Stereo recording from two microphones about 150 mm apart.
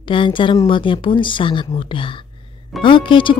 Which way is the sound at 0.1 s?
35° left (ahead or behind).